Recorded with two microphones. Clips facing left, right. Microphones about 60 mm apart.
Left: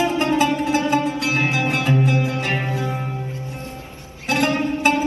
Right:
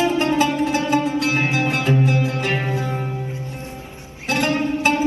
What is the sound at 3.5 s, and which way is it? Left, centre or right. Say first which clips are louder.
Music: even; right.